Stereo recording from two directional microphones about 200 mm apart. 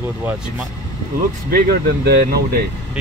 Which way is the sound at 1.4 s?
50° right (ahead or behind).